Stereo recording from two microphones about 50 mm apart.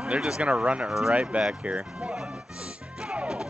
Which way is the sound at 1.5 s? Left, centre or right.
Right.